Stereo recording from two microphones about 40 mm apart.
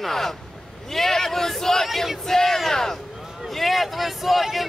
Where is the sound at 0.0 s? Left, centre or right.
Centre.